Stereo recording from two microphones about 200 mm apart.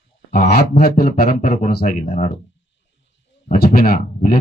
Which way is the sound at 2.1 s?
30° left (ahead or behind).